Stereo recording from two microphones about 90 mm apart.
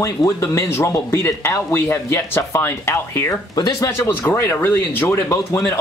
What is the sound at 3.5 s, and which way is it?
Speech, 45° left (ahead or behind).